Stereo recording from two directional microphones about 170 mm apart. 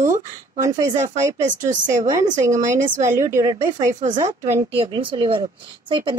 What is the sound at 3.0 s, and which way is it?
A woman's voice, 15° right (ahead or behind).